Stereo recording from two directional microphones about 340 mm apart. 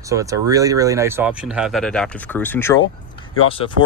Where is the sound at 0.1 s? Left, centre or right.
Centre.